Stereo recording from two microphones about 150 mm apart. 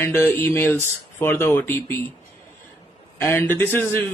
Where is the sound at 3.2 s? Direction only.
15° left (ahead or behind).